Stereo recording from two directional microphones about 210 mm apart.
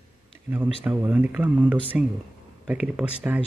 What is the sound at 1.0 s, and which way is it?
Speech, 10° right (ahead or behind).